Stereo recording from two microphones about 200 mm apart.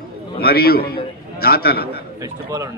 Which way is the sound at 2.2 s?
15° right (ahead or behind).